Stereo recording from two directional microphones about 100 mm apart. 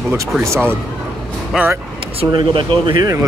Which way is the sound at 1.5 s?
5° right (ahead or behind).